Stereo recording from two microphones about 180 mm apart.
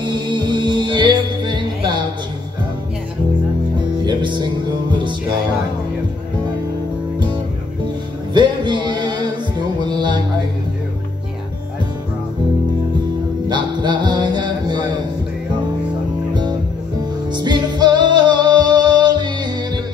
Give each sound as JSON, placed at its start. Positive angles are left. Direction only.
{"t": 0.0, "sound": "music", "side_deg": -25}
{"t": 3.8, "sound": "music", "side_deg": -25}
{"t": 8.3, "sound": "music", "side_deg": -25}
{"t": 13.5, "sound": "music", "side_deg": -25}
{"t": 17.3, "sound": "music", "side_deg": -25}